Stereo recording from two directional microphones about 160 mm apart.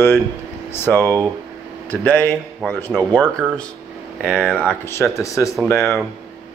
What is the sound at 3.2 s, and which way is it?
Speech, 5° left (ahead or behind).